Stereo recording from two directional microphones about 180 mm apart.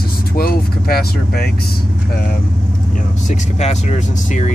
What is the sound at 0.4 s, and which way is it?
Vehicle, 55° left (ahead or behind).